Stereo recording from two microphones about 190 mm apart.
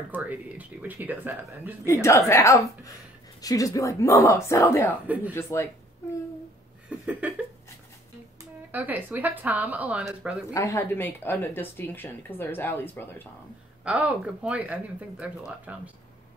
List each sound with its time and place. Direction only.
0.1 s speech: 10° right (ahead or behind)
1.9 s speech: 15° left (ahead or behind)
5.0 s speech: 10° right (ahead or behind)
5.3 s speech: 15° left (ahead or behind)
7.1 s speech: 10° right (ahead or behind)
8.4 s speech: 10° right (ahead or behind)
10.5 s speech: 15° left (ahead or behind)
13.8 s speech: 5° right (ahead or behind)